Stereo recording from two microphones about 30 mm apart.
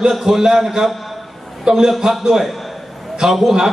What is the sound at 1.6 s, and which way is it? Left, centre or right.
Speech, right.